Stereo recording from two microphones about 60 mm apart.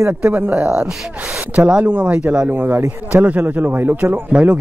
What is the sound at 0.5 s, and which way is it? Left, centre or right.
Speech, centre.